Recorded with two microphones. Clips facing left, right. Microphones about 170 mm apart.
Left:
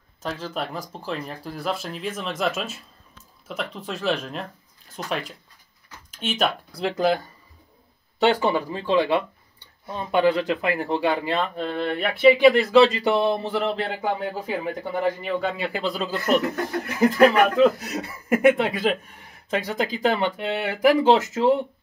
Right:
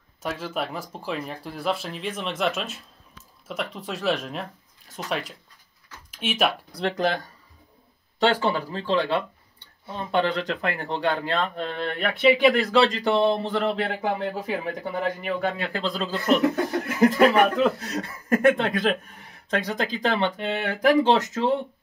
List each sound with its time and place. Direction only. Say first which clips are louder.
0.2 s speech: even; 5° right (ahead or behind)
8.2 s speech: left 2 dB; 15° left (ahead or behind)
17.8 s speech: left 1 dB; 5° left (ahead or behind)